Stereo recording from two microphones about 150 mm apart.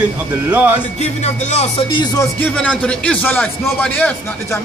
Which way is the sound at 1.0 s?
50° left (ahead or behind).